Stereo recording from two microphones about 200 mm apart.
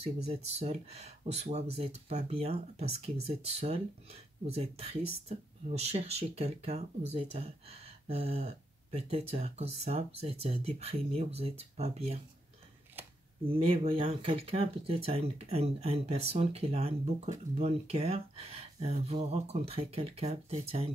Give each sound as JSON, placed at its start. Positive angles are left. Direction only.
{"t": 0.3, "sound": "speech", "side_deg": -30}
{"t": 13.5, "sound": "speech", "side_deg": -25}